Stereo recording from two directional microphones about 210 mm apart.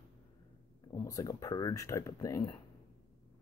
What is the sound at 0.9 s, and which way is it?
Speech, 15° left (ahead or behind).